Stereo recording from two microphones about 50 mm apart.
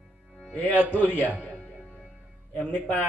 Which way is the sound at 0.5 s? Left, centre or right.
Left.